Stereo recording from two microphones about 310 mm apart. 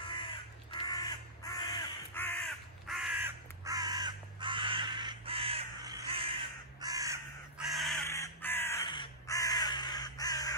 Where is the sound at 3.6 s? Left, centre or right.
Centre.